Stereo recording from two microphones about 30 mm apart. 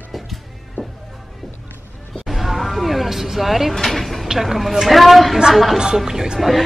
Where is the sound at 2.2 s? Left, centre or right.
Centre.